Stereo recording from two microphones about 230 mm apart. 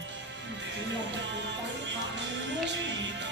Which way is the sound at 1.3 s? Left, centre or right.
Right.